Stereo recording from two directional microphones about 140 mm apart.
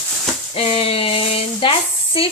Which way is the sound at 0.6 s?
45° left (ahead or behind).